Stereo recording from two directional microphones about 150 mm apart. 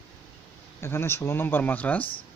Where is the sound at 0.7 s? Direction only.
15° left (ahead or behind).